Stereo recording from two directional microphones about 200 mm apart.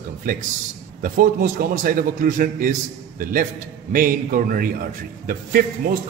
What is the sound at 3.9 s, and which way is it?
Speech, 45° right (ahead or behind).